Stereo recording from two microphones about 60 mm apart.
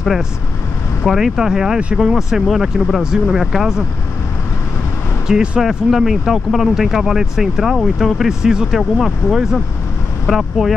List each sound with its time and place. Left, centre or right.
1.0 s speech: centre
5.3 s speech: centre
5.6 s speech: centre